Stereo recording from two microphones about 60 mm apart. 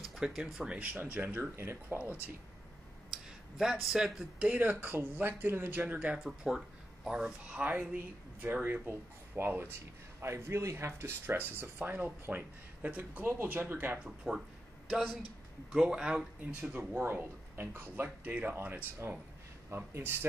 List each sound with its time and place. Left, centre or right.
0.0 s a sound: centre
0.6 s speech: centre; by 2.0 s right
3.1 s a sound: centre
3.9 s speech: centre
4.4 s speech: right
6.1 s speech: centre; by 9.8 s right
10.2 s speech: right
13.3 s speech: right
14.0 s speech: centre
16.7 s speech: right
19.7 s speech: right